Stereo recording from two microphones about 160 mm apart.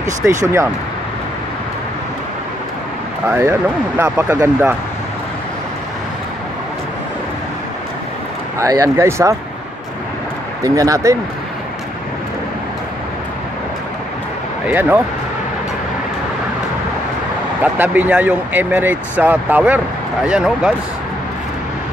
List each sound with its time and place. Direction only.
0.2 s speech: 10° right (ahead or behind)
3.3 s speech: 15° right (ahead or behind)
8.5 s speech: 20° right (ahead or behind)
10.6 s speech: 20° right (ahead or behind)
14.7 s speech: 10° right (ahead or behind)
17.6 s speech: 10° right (ahead or behind)